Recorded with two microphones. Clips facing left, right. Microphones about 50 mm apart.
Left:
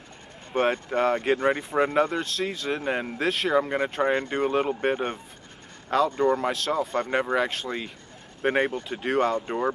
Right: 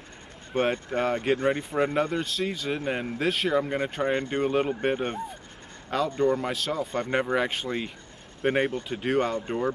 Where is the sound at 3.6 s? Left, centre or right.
Centre.